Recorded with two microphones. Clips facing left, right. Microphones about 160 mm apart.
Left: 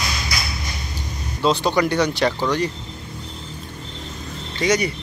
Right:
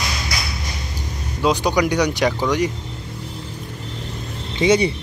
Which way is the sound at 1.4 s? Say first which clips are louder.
Right 1 dB; 15° right (ahead or behind).